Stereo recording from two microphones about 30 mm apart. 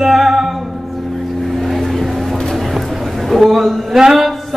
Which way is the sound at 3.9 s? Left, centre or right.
Centre.